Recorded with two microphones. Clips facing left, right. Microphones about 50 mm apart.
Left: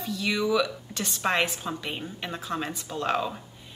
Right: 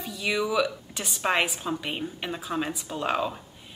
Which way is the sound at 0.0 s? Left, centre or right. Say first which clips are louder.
Even; centre.